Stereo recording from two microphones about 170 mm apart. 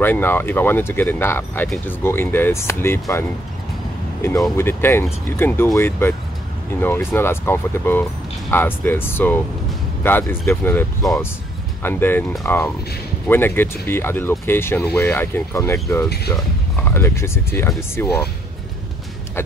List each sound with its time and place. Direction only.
0.0 s speech: 10° left (ahead or behind)